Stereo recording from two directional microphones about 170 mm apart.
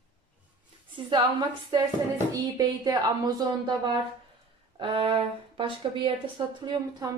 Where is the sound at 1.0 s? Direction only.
30° right (ahead or behind).